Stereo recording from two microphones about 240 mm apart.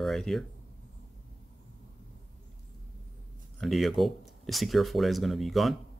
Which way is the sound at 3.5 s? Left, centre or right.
Centre.